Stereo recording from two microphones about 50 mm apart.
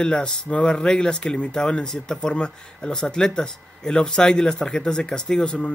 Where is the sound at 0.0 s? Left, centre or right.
Centre.